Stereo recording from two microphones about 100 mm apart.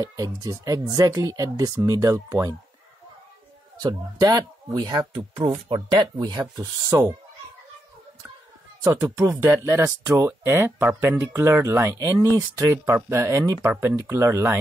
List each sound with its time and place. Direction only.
0.0 s speech: 40° right (ahead or behind)
3.8 s speech: 40° right (ahead or behind)
5.3 s speech: 60° right (ahead or behind)
6.5 s speech: 35° right (ahead or behind)
8.8 s speech: 20° right (ahead or behind)
9.2 s speech: 30° right (ahead or behind)